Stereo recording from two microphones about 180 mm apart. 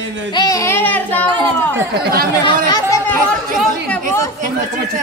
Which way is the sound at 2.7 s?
15° left (ahead or behind).